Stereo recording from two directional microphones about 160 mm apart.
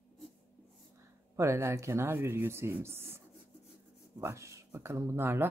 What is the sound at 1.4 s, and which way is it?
Speech, 15° right (ahead or behind).